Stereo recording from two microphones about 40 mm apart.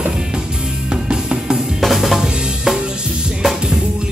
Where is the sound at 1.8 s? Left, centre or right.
Centre.